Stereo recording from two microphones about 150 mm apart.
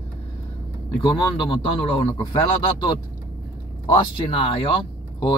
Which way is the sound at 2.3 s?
35° left (ahead or behind).